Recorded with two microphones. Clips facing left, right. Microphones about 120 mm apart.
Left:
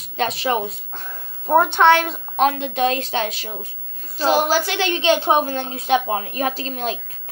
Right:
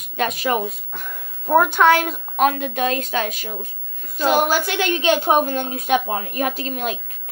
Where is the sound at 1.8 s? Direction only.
30° left (ahead or behind).